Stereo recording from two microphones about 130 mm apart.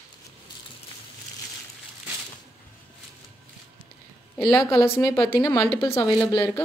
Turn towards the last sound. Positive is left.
turn(degrees=35)  # may be behind; listen again after turning